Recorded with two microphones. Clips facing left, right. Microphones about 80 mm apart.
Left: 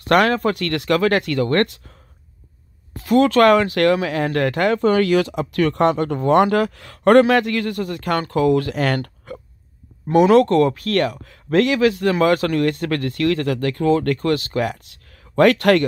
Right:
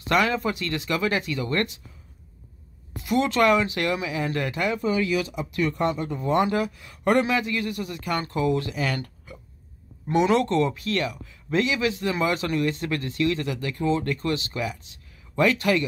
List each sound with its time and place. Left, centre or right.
0.0 s speech: left
3.3 s speech: left
10.1 s speech: left